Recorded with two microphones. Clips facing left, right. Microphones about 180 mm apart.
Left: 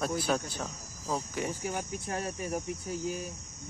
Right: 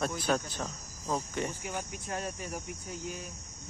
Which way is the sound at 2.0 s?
30° left (ahead or behind).